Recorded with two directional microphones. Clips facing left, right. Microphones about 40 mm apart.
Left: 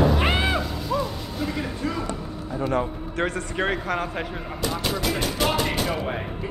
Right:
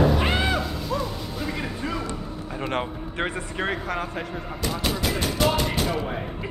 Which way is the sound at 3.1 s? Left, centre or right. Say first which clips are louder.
Left 2 dB; centre.